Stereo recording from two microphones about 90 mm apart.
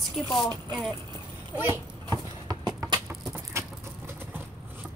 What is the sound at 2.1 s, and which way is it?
Clip-clop, 50° right (ahead or behind).